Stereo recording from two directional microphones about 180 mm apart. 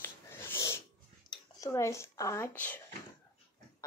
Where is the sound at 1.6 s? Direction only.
15° left (ahead or behind).